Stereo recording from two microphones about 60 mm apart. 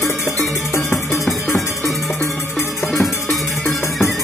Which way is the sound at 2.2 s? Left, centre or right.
Left.